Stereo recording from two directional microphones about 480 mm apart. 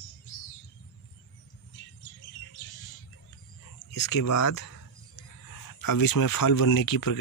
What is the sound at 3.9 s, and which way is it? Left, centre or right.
Speech, left.